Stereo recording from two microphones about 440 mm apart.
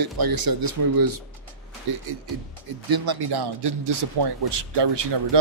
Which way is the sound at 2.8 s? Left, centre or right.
Right.